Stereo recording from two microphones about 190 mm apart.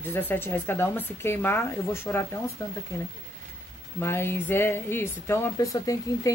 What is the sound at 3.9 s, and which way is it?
Speech, 10° left (ahead or behind).